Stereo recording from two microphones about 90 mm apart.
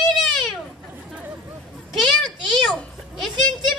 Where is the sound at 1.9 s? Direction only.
Centre (ahead or behind).